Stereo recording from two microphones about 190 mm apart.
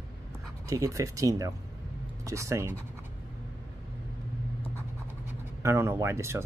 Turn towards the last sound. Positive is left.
turn(degrees=-15)  # may be behind; listen again after turning